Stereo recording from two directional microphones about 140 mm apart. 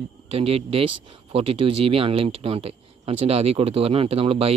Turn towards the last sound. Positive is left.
turn(degrees=-45)  # may be behind; listen again after turning